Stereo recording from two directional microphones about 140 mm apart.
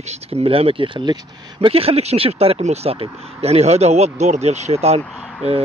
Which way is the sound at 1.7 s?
45° right (ahead or behind).